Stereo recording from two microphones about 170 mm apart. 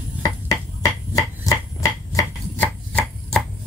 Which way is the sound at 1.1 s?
20° left (ahead or behind).